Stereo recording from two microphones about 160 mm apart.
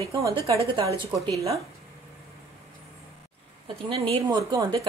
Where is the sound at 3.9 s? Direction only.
35° right (ahead or behind).